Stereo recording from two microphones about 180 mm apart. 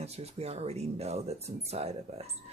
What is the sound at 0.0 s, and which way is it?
Speech, 35° right (ahead or behind).